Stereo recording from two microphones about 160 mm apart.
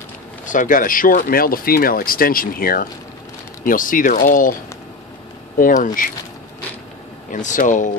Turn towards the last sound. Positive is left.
turn(degrees=50)  # may be behind; listen again after turning